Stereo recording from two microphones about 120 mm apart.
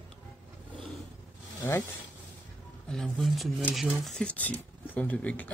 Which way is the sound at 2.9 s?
Centre (ahead or behind).